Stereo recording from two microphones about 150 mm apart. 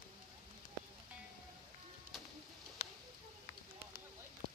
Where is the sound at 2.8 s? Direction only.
45° left (ahead or behind).